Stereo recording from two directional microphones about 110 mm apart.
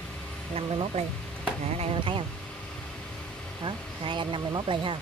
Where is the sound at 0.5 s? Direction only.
65° right (ahead or behind).